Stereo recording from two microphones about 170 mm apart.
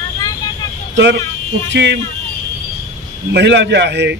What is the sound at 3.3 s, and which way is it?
Speech, 90° right.